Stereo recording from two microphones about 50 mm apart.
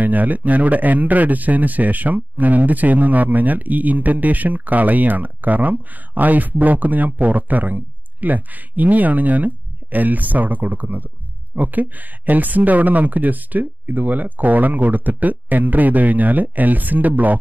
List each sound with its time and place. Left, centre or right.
0.0 s a man's voice: right